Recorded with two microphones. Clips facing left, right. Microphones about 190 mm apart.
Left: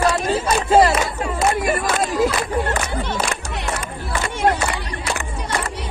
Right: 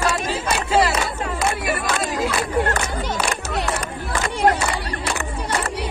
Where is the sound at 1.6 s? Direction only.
45° left (ahead or behind).